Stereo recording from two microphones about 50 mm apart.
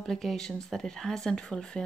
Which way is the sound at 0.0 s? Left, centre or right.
Centre.